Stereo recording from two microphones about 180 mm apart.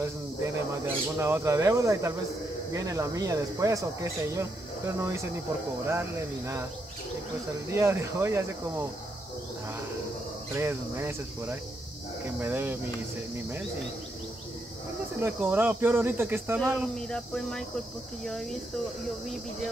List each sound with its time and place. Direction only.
0.8 s speech: 15° right (ahead or behind)
7.7 s speech: 15° right (ahead or behind)
10.5 s speech: 15° right (ahead or behind)
15.1 s speech: 10° right (ahead or behind)
17.1 s speech: 5° left (ahead or behind)